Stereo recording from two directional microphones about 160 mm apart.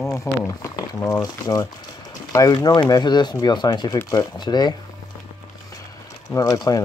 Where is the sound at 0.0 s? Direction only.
20° left (ahead or behind).